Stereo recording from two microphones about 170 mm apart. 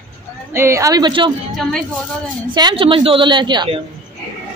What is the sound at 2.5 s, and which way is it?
Speech, 30° right (ahead or behind).